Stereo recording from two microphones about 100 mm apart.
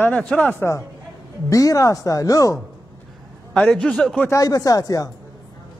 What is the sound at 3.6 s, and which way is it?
Speech, 10° left (ahead or behind).